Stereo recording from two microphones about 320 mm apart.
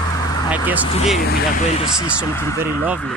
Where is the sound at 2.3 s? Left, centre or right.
Centre.